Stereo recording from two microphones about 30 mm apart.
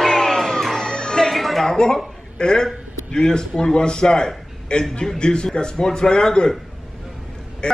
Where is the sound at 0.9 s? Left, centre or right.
Left.